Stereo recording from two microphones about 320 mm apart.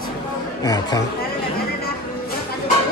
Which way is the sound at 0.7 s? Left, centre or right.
Centre.